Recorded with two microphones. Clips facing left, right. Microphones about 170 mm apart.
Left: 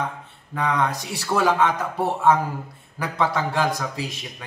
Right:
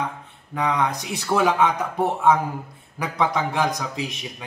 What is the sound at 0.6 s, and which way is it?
A man's voice, 15° right (ahead or behind).